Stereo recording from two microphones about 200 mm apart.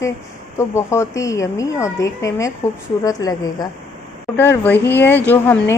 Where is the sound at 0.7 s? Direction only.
15° left (ahead or behind).